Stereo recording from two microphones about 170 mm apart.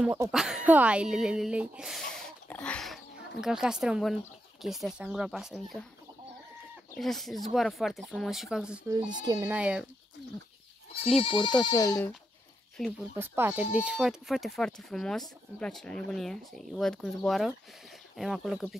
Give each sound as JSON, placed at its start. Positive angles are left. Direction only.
{"t": 0.0, "sound": "speech", "side_deg": -15}
{"t": 0.3, "sound": "speech", "side_deg": 0}
{"t": 7.0, "sound": "speech", "side_deg": 0}
{"t": 9.1, "sound": "speech", "side_deg": -25}
{"t": 9.5, "sound": "speech", "side_deg": -5}
{"t": 11.2, "sound": "speech", "side_deg": 30}
{"t": 13.2, "sound": "speech", "side_deg": -10}